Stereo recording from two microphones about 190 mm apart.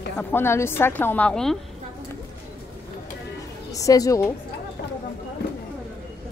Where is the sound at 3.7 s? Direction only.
15° left (ahead or behind).